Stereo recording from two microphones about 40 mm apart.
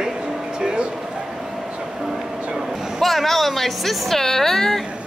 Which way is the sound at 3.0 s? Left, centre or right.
Centre.